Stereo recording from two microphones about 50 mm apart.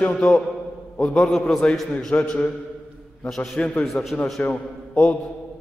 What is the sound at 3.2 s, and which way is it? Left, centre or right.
Speech, centre.